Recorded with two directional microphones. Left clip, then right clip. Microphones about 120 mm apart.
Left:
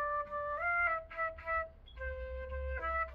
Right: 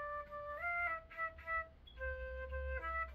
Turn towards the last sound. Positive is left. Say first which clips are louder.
# left 5 dB
turn(degrees=-25)  # may be behind; listen again after turning